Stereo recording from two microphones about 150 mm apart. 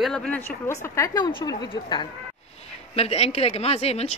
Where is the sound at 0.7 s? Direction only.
20° left (ahead or behind).